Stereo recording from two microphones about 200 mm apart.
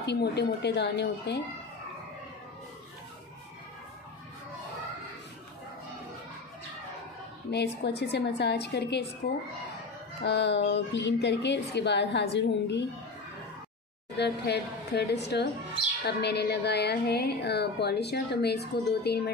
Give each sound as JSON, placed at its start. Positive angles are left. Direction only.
{"t": 0.0, "sound": "a woman's voice", "side_deg": 55}
{"t": 7.5, "sound": "a woman's voice", "side_deg": 55}
{"t": 10.2, "sound": "a woman's voice", "side_deg": 60}
{"t": 14.1, "sound": "a woman's voice", "side_deg": 55}